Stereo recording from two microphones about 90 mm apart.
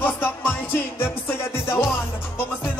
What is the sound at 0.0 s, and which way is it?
Music, 20° left (ahead or behind).